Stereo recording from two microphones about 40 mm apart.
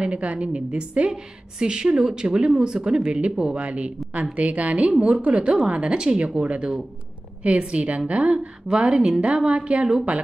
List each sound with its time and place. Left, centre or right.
0.0 s a woman's voice: right
8.8 s a woman's voice: right